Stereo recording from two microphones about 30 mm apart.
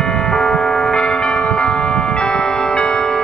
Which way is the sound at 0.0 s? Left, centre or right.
Left.